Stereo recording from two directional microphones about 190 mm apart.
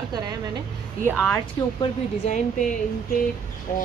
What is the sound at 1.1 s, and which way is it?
Speech, 10° left (ahead or behind).